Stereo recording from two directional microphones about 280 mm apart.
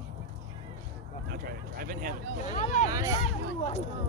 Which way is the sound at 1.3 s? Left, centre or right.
Right.